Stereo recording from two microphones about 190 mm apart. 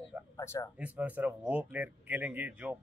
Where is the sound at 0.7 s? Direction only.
10° right (ahead or behind).